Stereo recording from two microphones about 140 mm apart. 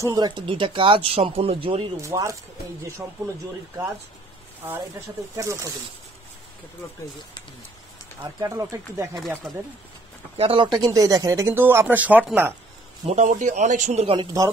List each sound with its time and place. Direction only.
0.0 s speech: 30° right (ahead or behind)
2.0 s speech: 20° right (ahead or behind)
5.3 s speech: 20° right (ahead or behind)
8.2 s speech: 25° right (ahead or behind)
10.3 s speech: 40° right (ahead or behind); by 12.5 s 15° right (ahead or behind)
13.0 s a man's voice: 55° right (ahead or behind)
14.1 s speech: 25° right (ahead or behind)